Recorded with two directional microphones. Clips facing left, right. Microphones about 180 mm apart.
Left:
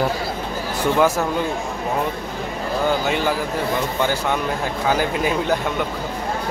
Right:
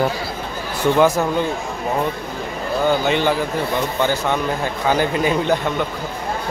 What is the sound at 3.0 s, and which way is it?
Speech, 5° left (ahead or behind).